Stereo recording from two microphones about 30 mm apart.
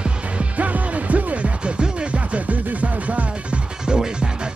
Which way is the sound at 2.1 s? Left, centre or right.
Right.